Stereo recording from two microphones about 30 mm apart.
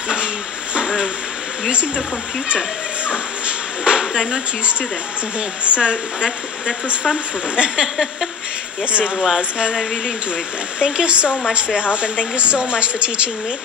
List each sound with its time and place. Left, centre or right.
0.7 s a sound: right
3.1 s speech: right
4.0 s speech: centre
5.7 s speech: right
7.8 s a sound: centre
9.4 s speech: right
10.8 s speech: right